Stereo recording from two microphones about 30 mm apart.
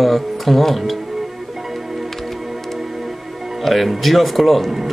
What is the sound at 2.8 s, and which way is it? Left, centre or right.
Music, centre.